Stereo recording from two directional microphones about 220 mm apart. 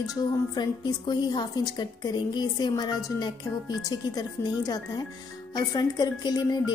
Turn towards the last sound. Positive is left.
turn(degrees=20)  # may be behind; listen again after turning